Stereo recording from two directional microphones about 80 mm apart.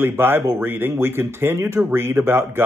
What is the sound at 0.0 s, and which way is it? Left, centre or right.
Speech, right.